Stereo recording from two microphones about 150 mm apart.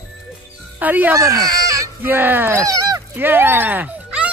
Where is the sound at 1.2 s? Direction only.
25° right (ahead or behind).